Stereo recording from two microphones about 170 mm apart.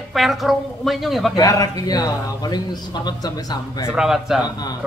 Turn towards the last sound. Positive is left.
turn(degrees=25)  # may be behind; listen again after turning